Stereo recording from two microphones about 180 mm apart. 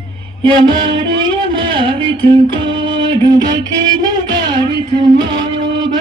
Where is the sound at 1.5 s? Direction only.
30° right (ahead or behind).